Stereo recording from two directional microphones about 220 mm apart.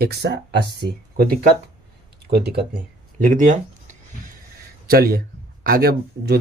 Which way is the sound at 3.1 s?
35° right (ahead or behind).